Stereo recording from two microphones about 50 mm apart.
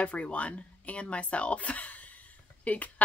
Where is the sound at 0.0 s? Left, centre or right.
Left.